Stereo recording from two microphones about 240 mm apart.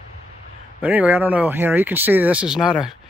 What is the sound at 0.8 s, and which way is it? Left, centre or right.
Speech, centre.